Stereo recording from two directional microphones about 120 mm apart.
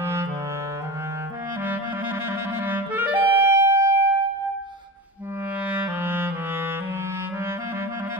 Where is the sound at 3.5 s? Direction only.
20° right (ahead or behind).